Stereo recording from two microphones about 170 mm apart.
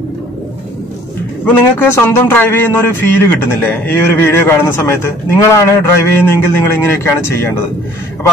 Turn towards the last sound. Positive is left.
turn(degrees=15)  # may be behind; listen again after turning